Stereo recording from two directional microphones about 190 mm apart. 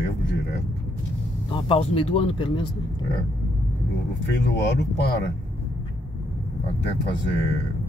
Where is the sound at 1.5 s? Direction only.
30° left (ahead or behind).